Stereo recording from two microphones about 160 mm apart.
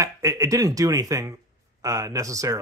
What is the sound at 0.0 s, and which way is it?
Speech, 20° right (ahead or behind).